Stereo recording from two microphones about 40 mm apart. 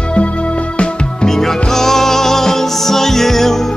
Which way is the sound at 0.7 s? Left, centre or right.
Left.